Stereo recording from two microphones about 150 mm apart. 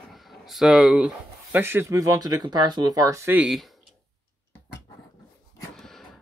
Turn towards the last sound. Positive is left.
turn(degrees=0)  # may be behind; listen again after turning